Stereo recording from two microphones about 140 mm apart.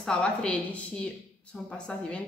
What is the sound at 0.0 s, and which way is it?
Speech, 5° left (ahead or behind).